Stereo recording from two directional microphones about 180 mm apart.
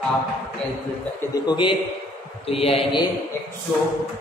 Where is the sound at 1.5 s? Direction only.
25° left (ahead or behind).